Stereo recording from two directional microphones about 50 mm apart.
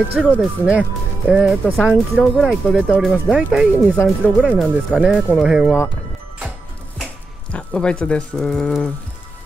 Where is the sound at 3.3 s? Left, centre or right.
Centre.